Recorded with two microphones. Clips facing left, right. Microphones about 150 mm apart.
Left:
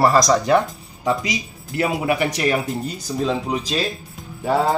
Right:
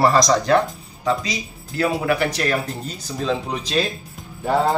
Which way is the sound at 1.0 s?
20° left (ahead or behind).